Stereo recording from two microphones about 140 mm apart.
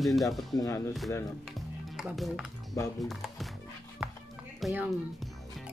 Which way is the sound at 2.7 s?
25° left (ahead or behind).